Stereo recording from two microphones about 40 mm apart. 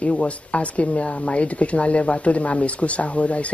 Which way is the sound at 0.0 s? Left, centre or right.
Left.